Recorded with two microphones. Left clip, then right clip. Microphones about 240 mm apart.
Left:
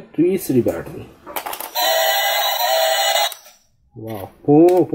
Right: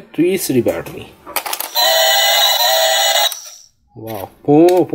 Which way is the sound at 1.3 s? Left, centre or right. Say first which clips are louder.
Right 5 dB; centre.